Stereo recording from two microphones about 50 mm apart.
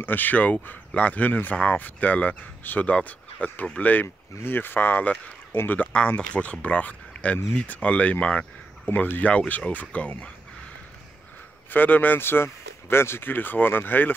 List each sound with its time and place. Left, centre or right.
0.0 s speech: left
4.4 s speech: left
5.9 s speech: left
11.7 s speech: left
12.2 s speech: left